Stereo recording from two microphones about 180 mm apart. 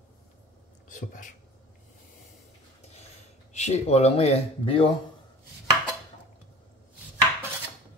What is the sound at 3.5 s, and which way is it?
Speech, 35° left (ahead or behind).